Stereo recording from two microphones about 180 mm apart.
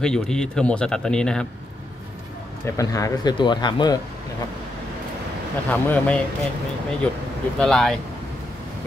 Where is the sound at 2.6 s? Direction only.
20° left (ahead or behind).